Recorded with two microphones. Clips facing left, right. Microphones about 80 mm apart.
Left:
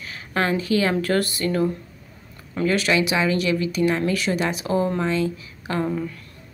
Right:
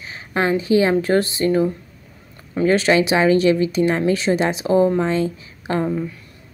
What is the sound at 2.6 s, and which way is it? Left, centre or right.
A woman's voice, right.